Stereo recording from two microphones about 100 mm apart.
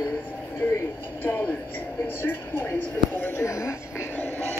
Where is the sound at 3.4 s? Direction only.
30° left (ahead or behind).